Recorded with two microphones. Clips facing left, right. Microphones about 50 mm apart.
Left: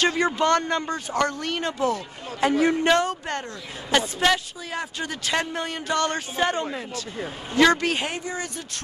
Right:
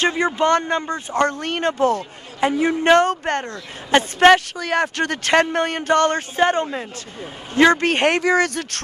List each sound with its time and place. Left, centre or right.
0.0 s speech: right
2.4 s a man's voice: right
2.8 s speech: right
4.6 s speech: right